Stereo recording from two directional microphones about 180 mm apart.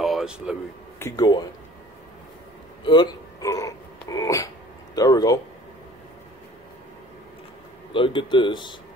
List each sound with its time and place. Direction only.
0.0 s a sound: centre (ahead or behind)
0.9 s speech: 15° left (ahead or behind)
2.8 s speech: 25° left (ahead or behind)
7.9 s speech: 30° left (ahead or behind)